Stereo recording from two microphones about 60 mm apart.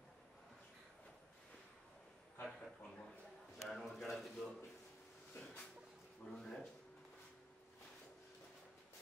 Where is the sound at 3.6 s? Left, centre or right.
Centre.